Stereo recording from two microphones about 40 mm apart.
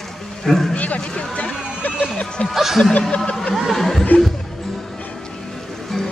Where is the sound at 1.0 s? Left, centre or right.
Left.